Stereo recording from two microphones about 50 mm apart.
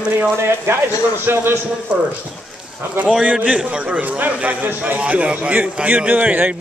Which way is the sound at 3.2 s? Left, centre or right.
Right.